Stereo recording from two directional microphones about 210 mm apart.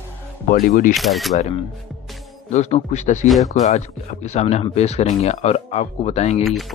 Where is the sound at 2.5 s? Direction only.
35° left (ahead or behind).